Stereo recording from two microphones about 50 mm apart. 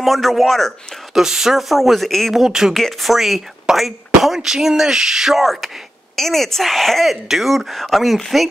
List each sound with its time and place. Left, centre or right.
0.0 s speech: centre
1.1 s speech: centre
2.3 s speech: centre
2.7 s speech: centre